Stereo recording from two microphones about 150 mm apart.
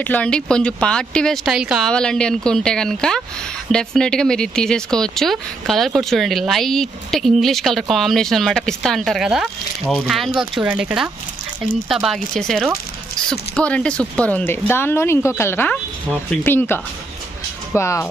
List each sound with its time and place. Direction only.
0.0 s speech: 10° left (ahead or behind)